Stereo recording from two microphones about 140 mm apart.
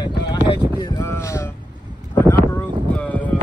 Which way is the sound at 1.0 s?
20° left (ahead or behind).